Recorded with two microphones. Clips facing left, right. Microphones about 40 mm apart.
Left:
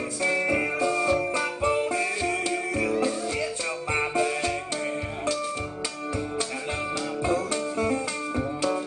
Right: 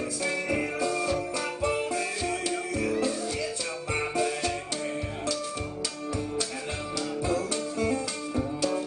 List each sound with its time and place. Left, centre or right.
0.2 s music: left
3.9 s music: left
7.2 s music: left
8.4 s music: left